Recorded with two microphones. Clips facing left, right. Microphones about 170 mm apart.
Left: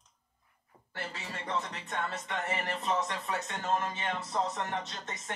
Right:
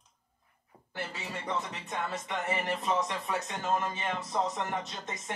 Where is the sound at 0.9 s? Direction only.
20° right (ahead or behind).